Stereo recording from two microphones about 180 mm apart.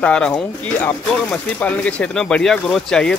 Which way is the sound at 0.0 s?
5° left (ahead or behind).